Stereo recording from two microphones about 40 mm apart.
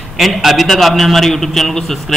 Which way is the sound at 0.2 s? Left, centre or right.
Centre.